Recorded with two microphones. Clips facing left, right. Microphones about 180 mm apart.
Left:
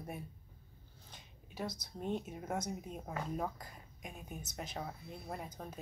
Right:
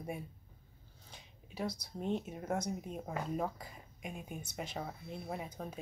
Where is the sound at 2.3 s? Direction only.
5° left (ahead or behind).